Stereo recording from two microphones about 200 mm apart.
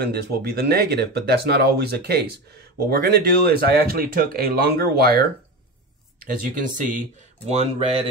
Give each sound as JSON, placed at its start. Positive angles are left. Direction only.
{"t": 0.0, "sound": "speech", "side_deg": -50}
{"t": 6.7, "sound": "speech", "side_deg": -40}